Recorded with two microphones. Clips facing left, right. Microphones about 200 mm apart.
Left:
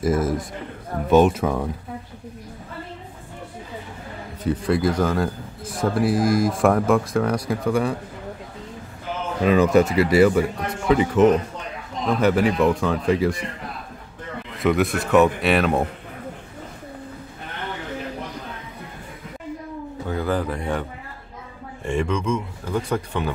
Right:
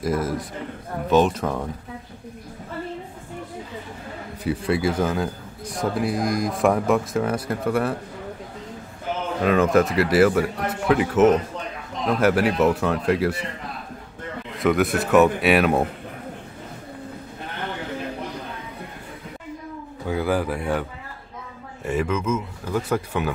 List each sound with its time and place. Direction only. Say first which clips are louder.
0.1 s a man's voice: left 1 dB; 45° left (ahead or behind)
1.1 s speech: left 3 dB; 10° left (ahead or behind)
4.4 s a man's voice: left 2 dB; 5° right (ahead or behind)
9.4 s a man's voice: left 2 dB; centre (ahead or behind)
14.6 s a man's voice: even; centre (ahead or behind)
20.1 s a man's voice: right 1 dB; 10° right (ahead or behind)
21.8 s a man's voice: even; 5° right (ahead or behind)